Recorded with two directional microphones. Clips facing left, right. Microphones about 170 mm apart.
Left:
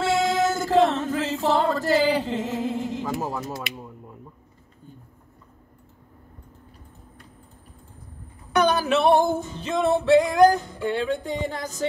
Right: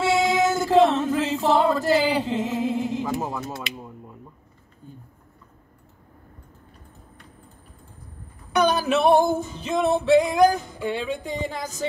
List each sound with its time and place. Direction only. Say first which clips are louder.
0.0 s music: right 1 dB; 20° right (ahead or behind)
3.3 s speech: left 1 dB; centre (ahead or behind)
8.5 s music: even; 15° right (ahead or behind)